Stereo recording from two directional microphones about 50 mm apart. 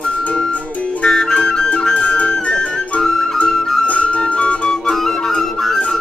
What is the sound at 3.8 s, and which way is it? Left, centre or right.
Flute, left.